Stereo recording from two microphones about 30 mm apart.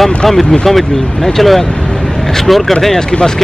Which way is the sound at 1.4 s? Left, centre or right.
Centre.